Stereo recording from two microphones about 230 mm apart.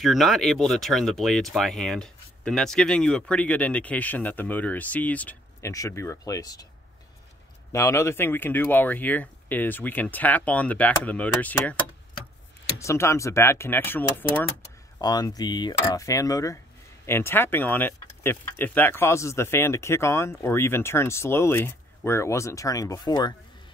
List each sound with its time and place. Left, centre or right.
0.0 s speech: centre
7.7 s speech: centre
12.7 s speech: centre